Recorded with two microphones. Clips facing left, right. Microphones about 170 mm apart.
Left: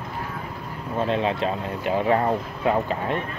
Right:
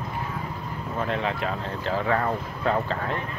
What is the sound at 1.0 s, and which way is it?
Speech, 20° left (ahead or behind).